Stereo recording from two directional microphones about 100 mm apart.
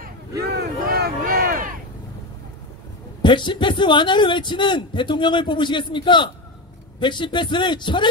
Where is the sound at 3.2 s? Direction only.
50° left (ahead or behind).